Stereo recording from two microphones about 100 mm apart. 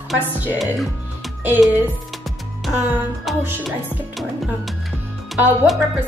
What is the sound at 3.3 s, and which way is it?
Speech, centre (ahead or behind).